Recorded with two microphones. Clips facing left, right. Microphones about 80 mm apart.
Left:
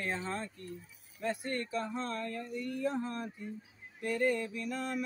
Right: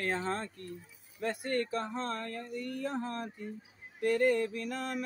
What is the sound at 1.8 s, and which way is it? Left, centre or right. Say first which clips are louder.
Speech: right 1 dB; right.